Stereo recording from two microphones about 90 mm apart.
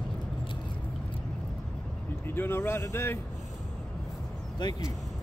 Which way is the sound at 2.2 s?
25° left (ahead or behind).